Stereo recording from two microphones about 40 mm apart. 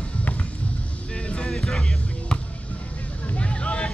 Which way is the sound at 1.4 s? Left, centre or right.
Centre.